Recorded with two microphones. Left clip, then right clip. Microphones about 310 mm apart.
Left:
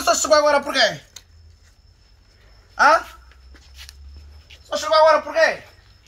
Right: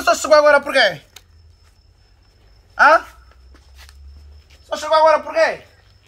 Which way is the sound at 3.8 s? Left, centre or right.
Centre.